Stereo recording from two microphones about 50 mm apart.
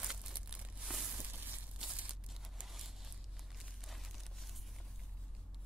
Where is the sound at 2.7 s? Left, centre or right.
Centre.